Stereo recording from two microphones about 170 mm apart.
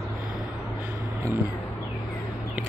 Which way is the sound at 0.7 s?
15° right (ahead or behind).